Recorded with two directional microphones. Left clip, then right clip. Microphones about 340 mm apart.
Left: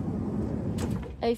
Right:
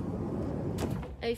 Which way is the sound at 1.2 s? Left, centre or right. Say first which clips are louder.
Left 6 dB; centre.